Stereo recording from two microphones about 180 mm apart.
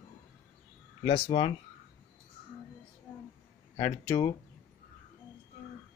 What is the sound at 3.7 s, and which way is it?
Speech, 20° left (ahead or behind).